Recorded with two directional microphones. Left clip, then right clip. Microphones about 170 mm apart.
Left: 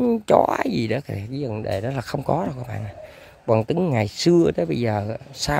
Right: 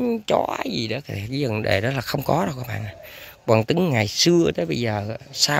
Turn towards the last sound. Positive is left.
turn(degrees=15)  # may be behind; listen again after turning